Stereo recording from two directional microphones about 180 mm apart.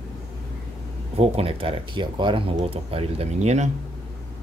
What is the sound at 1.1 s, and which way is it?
Speech, 35° right (ahead or behind).